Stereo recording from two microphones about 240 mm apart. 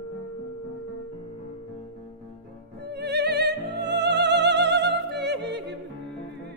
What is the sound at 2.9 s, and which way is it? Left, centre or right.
Music, right.